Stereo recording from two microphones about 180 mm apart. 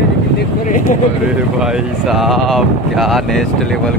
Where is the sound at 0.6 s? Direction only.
45° left (ahead or behind).